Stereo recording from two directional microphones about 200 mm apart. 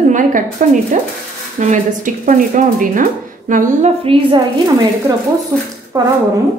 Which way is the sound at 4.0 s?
25° right (ahead or behind).